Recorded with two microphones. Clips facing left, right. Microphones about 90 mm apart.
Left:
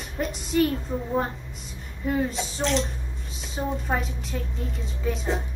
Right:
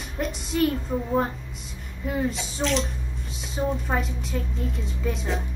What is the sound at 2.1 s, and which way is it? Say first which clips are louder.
Speech: left 1 dB; centre (ahead or behind).